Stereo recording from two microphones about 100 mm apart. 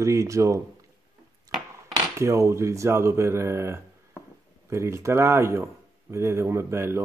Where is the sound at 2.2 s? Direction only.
30° right (ahead or behind).